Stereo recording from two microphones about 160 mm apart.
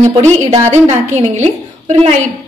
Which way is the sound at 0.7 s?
45° right (ahead or behind).